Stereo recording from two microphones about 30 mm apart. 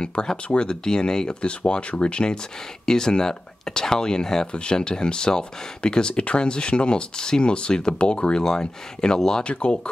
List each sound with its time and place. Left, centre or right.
0.0 s speech: left
1.4 s speech: left
2.9 s speech: centre
6.1 s speech: left
6.4 s speech: left
8.5 s speech: left
9.4 s speech: left